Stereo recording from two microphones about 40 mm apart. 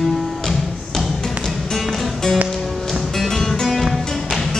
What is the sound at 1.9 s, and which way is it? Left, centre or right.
Music, centre.